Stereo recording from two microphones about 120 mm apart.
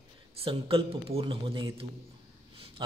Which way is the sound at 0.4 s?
50° right (ahead or behind).